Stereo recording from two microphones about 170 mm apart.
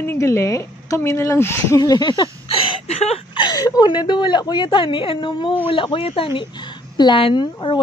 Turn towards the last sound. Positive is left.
turn(degrees=30)  # may be behind; listen again after turning